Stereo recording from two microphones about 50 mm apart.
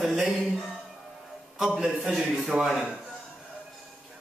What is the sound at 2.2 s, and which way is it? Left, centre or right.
Speech, centre.